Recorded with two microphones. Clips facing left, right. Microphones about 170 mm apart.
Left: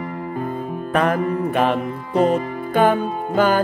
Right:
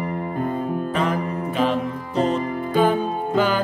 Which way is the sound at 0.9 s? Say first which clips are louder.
Left 4 dB; 55° left (ahead or behind).